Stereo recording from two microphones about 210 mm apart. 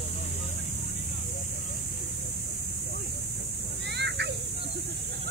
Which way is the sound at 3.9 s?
55° right (ahead or behind).